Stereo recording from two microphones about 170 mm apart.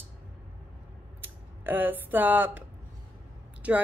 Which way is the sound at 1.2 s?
10° right (ahead or behind).